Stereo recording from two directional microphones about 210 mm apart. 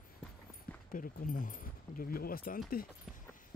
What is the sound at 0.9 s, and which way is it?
Speech, 40° left (ahead or behind).